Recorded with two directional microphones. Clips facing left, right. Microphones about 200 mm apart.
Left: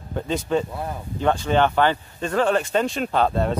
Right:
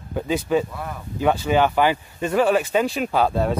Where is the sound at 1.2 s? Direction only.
10° right (ahead or behind).